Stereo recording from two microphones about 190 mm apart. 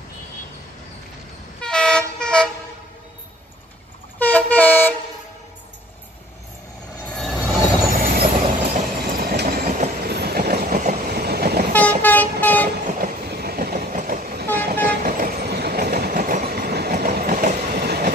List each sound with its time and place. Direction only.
1.6 s vehicle: 5° left (ahead or behind)
4.2 s vehicle: 10° left (ahead or behind)
7.1 s train: centre (ahead or behind)
8.0 s train: 50° right (ahead or behind)
11.7 s vehicle: 10° left (ahead or behind)
12.6 s train: 45° right (ahead or behind)